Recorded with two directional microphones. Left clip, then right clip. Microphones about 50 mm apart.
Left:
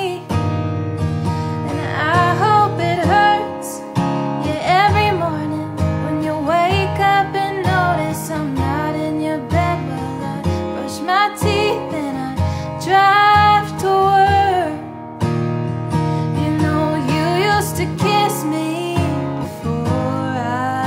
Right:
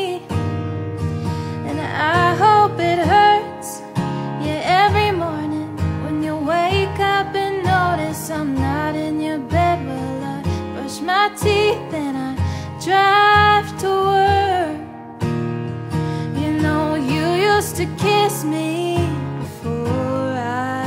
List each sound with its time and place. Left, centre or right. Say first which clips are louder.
2.0 s music: even; left
3.9 s music: left 5 dB; right
4.5 s music: even; centre
6.2 s music: left 2 dB; left
11.1 s music: even; left
16.5 s music: even; right
16.9 s music: left 1 dB; left
19.8 s music: even; right
20.2 s music: left 1 dB; left